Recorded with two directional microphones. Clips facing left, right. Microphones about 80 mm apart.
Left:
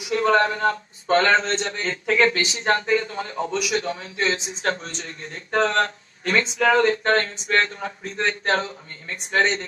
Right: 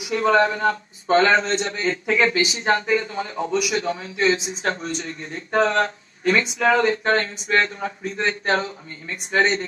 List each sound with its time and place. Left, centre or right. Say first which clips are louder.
0.1 s speech: right 1 dB; centre